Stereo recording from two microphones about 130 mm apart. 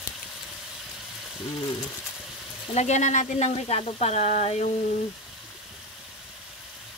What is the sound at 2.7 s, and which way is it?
Speech, 60° left (ahead or behind).